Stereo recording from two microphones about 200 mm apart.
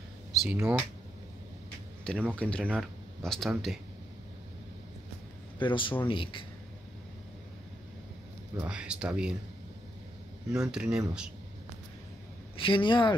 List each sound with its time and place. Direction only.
0.3 s a sound: centre (ahead or behind)
0.6 s speech: 10° right (ahead or behind)
2.3 s speech: 5° left (ahead or behind)
5.6 s speech: 25° left (ahead or behind)
8.6 s speech: 5° right (ahead or behind)
10.5 s speech: 5° right (ahead or behind)
12.5 s speech: 25° left (ahead or behind)